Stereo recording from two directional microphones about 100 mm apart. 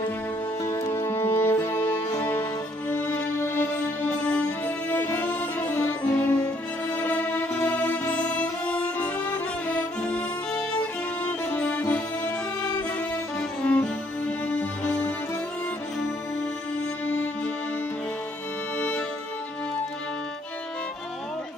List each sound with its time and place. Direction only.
0.7 s music: 35° left (ahead or behind); by 12.4 s 20° left (ahead or behind)
13.4 s music: 10° left (ahead or behind)
18.8 s music: 15° left (ahead or behind)